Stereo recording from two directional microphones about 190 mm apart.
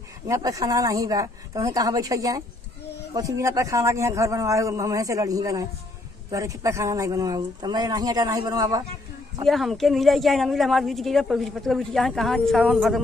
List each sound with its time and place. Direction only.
0.3 s a man's voice: 15° right (ahead or behind)
9.5 s a woman's voice: centre (ahead or behind)